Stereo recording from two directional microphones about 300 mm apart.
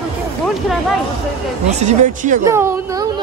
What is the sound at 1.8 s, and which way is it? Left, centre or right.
Speech, right.